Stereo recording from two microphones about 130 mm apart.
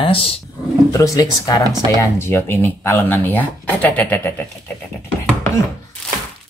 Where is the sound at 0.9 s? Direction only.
25° left (ahead or behind).